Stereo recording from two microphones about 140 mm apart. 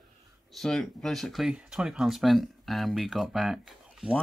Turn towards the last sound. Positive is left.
turn(degrees=-5)  # may be behind; listen again after turning